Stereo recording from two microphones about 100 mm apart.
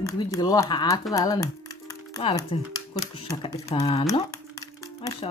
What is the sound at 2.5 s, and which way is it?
Cutlery, 70° left (ahead or behind).